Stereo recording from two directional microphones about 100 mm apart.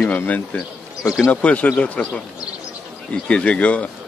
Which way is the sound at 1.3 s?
15° left (ahead or behind).